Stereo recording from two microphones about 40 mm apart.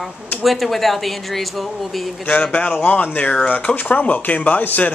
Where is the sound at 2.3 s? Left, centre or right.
Left.